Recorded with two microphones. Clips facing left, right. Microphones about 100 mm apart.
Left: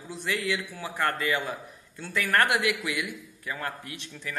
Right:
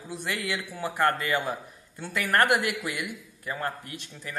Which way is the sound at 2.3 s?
40° right (ahead or behind).